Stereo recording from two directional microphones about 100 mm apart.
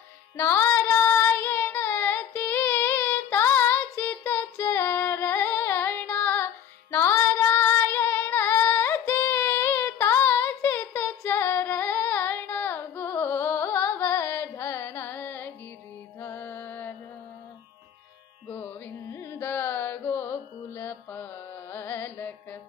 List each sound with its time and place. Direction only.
0.4 s female singing: 20° left (ahead or behind)
16.2 s music: 20° left (ahead or behind)
19.0 s carnatic music: 25° left (ahead or behind)